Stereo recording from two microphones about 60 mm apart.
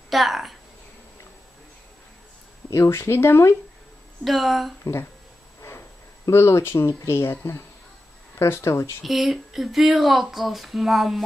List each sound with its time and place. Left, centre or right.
0.1 s speech: centre
2.7 s speech: left
4.2 s speech: centre
6.3 s speech: left
9.0 s speech: centre